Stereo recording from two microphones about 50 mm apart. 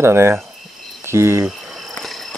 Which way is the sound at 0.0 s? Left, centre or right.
Right.